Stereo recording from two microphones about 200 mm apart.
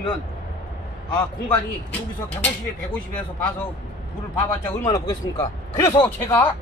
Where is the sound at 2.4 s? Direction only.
5° left (ahead or behind).